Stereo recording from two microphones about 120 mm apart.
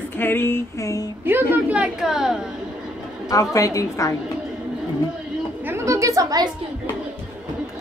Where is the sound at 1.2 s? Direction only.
15° right (ahead or behind).